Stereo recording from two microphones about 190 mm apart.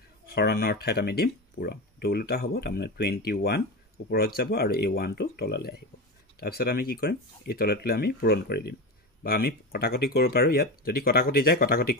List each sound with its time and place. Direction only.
0.3 s speech: 55° left (ahead or behind)